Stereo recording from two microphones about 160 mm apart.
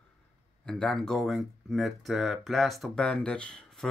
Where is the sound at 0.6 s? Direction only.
5° left (ahead or behind).